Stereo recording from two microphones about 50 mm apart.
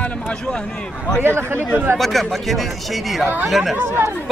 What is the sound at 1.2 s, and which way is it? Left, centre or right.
Speech, right.